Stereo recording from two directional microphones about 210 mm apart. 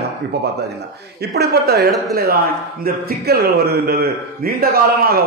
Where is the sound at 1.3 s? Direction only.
50° right (ahead or behind).